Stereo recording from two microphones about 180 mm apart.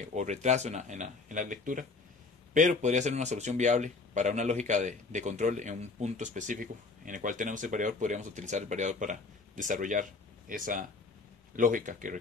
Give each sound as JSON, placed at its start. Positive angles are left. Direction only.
{"t": 0.1, "sound": "speech", "side_deg": -40}